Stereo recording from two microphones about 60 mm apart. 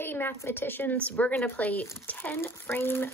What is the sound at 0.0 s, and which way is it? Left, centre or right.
A woman's voice, left.